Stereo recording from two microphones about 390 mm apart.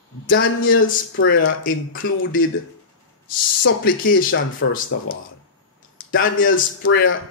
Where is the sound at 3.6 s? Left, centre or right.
Left.